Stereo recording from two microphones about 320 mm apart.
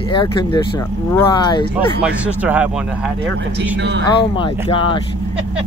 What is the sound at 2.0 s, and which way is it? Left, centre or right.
Speech, centre.